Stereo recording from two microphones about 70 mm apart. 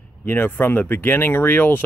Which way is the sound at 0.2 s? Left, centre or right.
Left.